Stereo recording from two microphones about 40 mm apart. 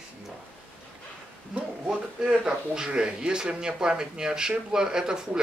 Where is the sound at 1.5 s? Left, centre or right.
Right.